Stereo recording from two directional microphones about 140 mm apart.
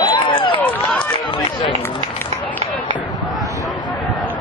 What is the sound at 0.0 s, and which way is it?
Run, 35° left (ahead or behind).